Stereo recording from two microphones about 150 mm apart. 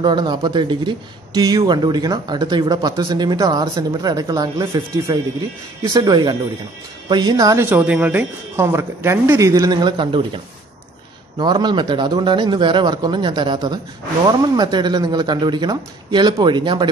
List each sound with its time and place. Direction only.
0.0 s a man's voice: 30° right (ahead or behind)